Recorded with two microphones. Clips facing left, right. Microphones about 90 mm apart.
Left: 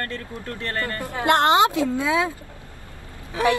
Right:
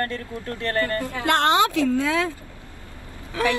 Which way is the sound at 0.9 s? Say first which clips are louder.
Left 2 dB; 25° left (ahead or behind).